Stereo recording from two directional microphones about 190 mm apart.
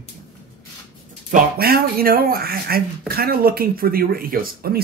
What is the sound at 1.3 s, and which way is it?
Speech, 55° right (ahead or behind).